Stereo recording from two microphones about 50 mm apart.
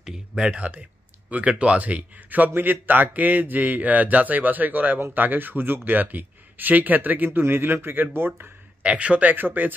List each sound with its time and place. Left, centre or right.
0.4 s speech: right
7.2 s speech: right
8.8 s speech: right
9.3 s speech: right